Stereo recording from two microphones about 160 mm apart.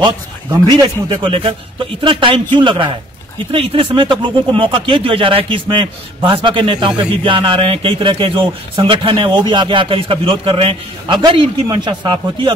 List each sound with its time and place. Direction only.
0.0 s speech: 30° right (ahead or behind)